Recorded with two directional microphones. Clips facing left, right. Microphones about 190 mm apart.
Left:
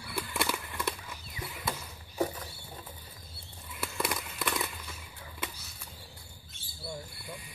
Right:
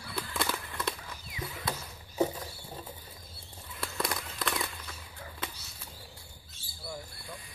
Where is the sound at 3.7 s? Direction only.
10° left (ahead or behind).